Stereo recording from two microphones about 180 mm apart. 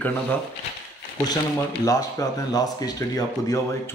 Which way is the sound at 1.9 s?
20° left (ahead or behind).